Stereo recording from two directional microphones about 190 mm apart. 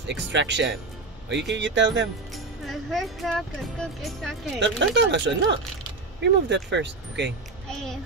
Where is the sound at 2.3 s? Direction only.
Centre (ahead or behind).